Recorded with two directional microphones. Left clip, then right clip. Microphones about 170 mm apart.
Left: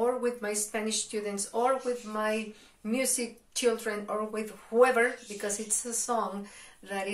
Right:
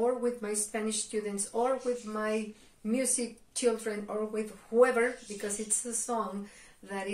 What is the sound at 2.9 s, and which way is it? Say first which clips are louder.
Speech: left 1 dB; 15° right (ahead or behind).